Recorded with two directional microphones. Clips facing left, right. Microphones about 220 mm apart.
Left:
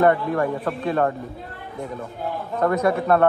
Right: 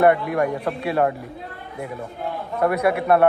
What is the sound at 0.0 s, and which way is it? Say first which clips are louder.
A man's voice: right 1 dB; 15° right (ahead or behind).